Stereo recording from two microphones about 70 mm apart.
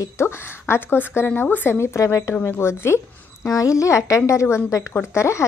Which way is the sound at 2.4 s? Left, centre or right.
Left.